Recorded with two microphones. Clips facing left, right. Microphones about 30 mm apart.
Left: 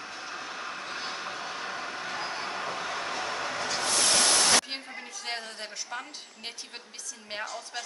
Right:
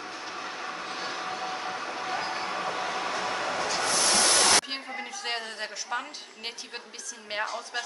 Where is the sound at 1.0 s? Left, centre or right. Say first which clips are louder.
Right 3 dB; centre.